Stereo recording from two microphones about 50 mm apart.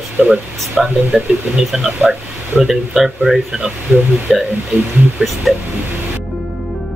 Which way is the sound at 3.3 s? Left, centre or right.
Right.